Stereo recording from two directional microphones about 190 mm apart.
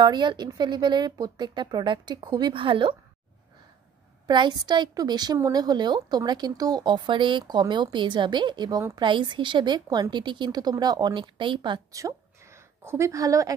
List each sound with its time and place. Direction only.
0.0 s a woman's voice: 25° right (ahead or behind)
4.3 s a woman's voice: 25° right (ahead or behind)